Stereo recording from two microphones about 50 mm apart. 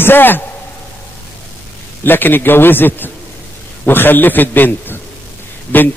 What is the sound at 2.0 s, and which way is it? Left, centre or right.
A man's voice, left.